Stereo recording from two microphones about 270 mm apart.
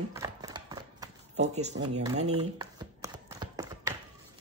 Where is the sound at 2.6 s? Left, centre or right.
Centre.